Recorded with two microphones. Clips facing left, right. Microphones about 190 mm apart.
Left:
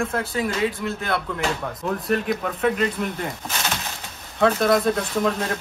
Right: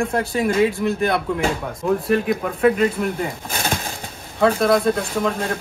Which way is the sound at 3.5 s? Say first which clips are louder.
Right 4 dB; 50° right (ahead or behind).